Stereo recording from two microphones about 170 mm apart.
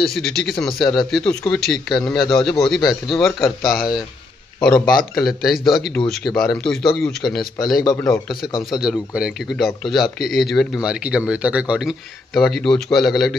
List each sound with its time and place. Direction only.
0.0 s speech: centre (ahead or behind)
7.8 s a man's voice: 20° left (ahead or behind)
8.1 s speech: centre (ahead or behind)